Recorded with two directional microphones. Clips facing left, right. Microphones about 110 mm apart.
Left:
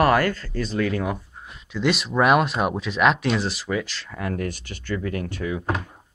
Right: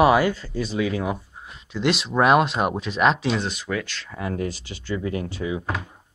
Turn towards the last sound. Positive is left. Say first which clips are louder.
# even
turn(degrees=-15)  # may be behind; listen again after turning